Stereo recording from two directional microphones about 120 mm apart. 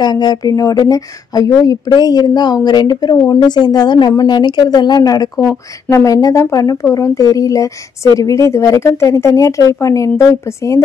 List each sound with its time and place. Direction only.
0.0 s speech: 35° left (ahead or behind)